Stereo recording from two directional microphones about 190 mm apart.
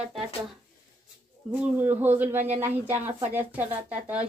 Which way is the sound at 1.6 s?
10° right (ahead or behind).